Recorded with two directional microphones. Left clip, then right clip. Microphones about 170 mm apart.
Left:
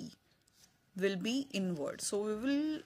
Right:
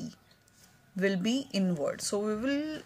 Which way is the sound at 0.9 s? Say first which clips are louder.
Right 5 dB; 35° left (ahead or behind).